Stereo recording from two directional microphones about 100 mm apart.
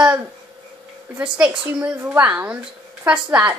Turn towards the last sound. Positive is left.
turn(degrees=-20)  # may be behind; listen again after turning